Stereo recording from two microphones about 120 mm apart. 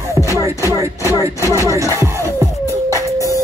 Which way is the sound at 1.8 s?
25° right (ahead or behind).